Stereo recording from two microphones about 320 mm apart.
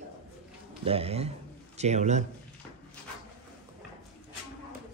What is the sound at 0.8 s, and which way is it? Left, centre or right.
A man's voice, centre.